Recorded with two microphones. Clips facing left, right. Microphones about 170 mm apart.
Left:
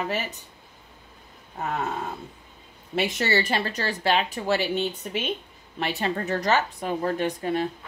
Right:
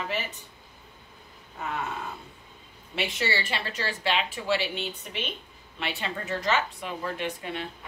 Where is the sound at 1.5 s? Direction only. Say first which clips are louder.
Left 4 dB; 40° left (ahead or behind).